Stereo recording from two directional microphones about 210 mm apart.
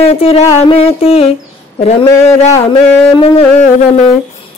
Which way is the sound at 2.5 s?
20° left (ahead or behind).